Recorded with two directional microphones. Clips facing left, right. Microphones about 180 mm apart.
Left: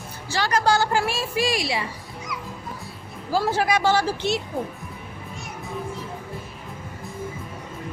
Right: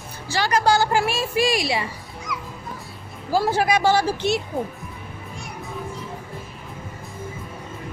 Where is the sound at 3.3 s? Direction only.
10° right (ahead or behind).